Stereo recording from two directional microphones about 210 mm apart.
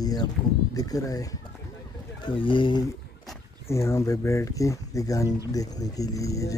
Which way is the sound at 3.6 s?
15° left (ahead or behind).